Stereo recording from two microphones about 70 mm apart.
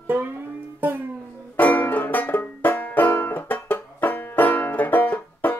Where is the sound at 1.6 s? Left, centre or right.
Left.